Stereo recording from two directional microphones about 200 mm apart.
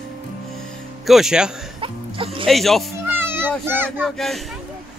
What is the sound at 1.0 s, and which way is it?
Speech, centre (ahead or behind).